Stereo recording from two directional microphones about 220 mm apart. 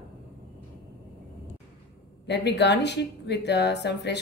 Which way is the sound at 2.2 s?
50° left (ahead or behind).